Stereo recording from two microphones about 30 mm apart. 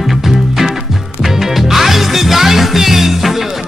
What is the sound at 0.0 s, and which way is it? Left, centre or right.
Music, centre.